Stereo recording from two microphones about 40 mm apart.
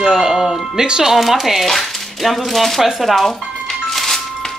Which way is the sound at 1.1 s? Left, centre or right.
Centre.